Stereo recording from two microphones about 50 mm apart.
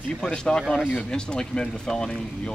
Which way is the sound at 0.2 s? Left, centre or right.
Centre.